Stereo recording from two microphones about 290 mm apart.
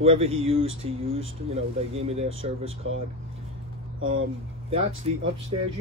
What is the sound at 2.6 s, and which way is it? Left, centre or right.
Speech, right.